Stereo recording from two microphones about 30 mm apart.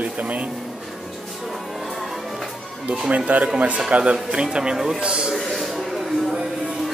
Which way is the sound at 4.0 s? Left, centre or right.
Right.